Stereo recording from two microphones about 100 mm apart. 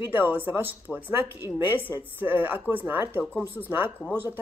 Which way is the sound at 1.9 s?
20° right (ahead or behind).